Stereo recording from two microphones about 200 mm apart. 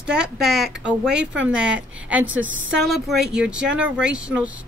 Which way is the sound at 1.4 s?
5° right (ahead or behind).